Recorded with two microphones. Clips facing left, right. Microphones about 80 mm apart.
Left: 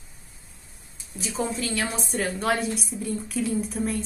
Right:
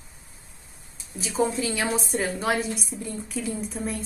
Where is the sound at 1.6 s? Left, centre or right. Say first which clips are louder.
Right 2 dB; centre.